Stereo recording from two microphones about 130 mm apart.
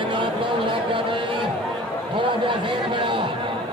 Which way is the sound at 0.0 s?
40° right (ahead or behind).